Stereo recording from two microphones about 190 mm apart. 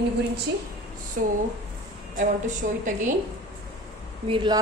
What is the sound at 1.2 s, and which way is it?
Speech, 45° right (ahead or behind).